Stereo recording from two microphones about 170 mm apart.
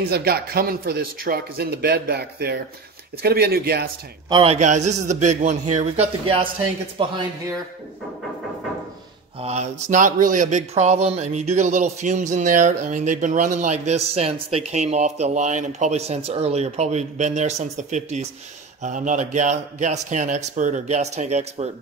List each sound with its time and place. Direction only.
0.1 s speech: 65° right (ahead or behind)
4.3 s a man's voice: 30° right (ahead or behind)
4.6 s a man's voice: 45° right (ahead or behind)
9.4 s speech: 40° right (ahead or behind)